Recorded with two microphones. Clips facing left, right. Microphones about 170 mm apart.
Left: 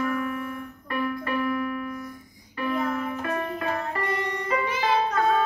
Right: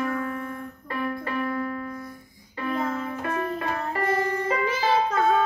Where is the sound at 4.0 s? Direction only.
30° right (ahead or behind).